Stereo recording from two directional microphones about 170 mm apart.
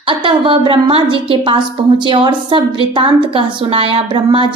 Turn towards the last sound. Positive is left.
turn(degrees=-30)  # may be behind; listen again after turning